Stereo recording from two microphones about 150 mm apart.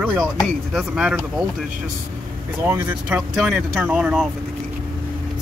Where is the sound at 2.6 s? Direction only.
15° right (ahead or behind).